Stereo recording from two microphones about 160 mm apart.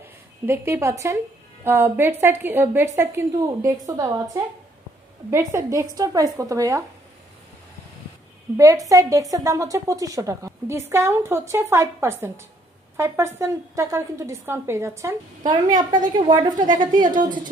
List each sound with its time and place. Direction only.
0.0 s a woman's voice: 15° right (ahead or behind)
8.5 s a woman's voice: 20° right (ahead or behind)
16.2 s a woman's voice: 30° right (ahead or behind)
16.5 s a woman's voice: 55° right (ahead or behind)